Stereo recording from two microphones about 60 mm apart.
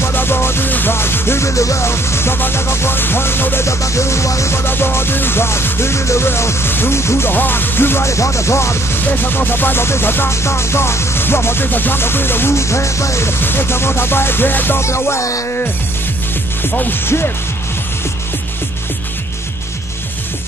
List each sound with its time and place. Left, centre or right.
0.0 s music: left
3.6 s music: left
4.6 s music: left
8.1 s music: left
8.9 s music: left
13.4 s music: left
14.8 s music: left
17.0 s music: left